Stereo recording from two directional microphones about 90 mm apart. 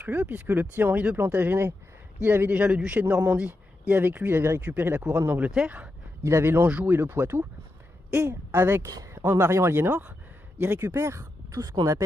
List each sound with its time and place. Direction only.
0.0 s speech: 20° right (ahead or behind)
6.2 s speech: 30° right (ahead or behind)
8.5 s speech: 20° right (ahead or behind)